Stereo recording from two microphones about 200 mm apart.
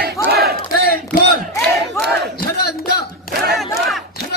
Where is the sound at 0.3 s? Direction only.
50° right (ahead or behind).